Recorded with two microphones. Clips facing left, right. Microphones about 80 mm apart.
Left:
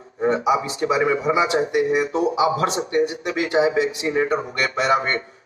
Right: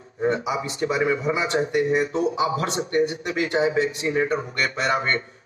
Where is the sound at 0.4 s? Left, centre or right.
Left.